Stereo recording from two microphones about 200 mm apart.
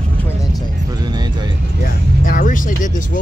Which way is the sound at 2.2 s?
40° left (ahead or behind).